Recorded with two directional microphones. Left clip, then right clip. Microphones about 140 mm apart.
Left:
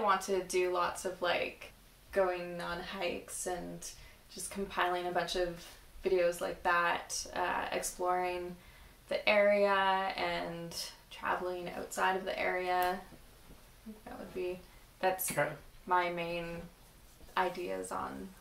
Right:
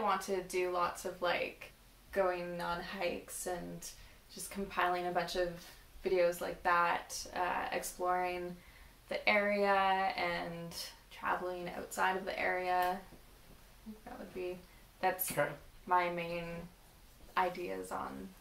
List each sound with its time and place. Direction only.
0.0 s speech: 15° left (ahead or behind)
4.6 s speech: 15° left (ahead or behind)
15.0 s speech: 15° left (ahead or behind)